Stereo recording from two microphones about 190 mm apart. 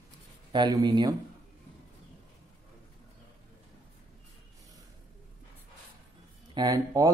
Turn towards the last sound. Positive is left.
turn(degrees=-20)  # may be behind; listen again after turning